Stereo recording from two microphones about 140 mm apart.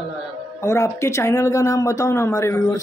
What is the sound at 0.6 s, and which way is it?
Speech, 20° left (ahead or behind).